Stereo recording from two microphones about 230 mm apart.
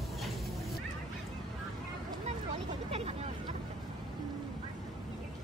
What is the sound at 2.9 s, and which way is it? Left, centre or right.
Vehicle, right.